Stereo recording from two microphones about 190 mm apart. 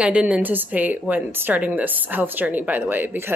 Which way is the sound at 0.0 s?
5° right (ahead or behind).